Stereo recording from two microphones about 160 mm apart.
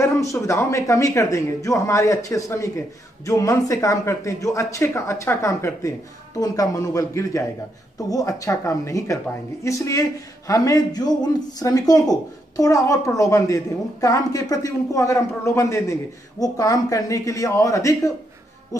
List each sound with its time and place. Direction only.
0.0 s speech: 20° left (ahead or behind)